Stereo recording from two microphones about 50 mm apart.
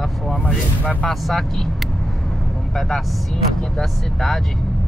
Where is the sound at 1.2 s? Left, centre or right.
Centre.